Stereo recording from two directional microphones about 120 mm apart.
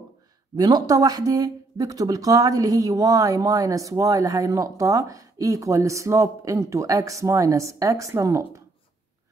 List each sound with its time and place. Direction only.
0.6 s speech: 35° right (ahead or behind)